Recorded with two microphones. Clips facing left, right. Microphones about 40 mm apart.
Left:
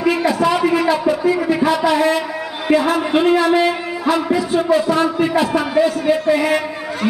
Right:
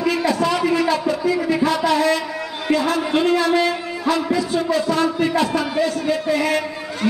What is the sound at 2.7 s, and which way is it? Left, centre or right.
A man's voice, centre.